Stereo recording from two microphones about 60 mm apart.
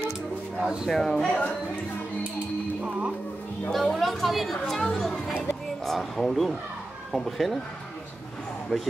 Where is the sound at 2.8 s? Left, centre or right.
Centre.